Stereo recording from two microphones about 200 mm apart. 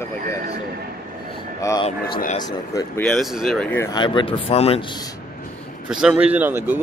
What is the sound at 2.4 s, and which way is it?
Speech, 20° left (ahead or behind).